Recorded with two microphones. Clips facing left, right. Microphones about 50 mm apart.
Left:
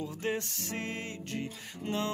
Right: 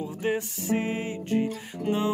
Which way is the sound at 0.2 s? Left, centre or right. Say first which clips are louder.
Right 7 dB; centre.